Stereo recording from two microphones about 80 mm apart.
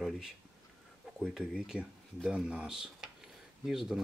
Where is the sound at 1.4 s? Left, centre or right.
Centre.